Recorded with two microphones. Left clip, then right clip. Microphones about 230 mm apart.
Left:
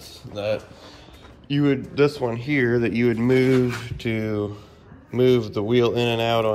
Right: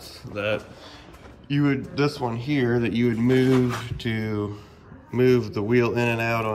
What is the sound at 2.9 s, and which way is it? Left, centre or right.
Speech, left.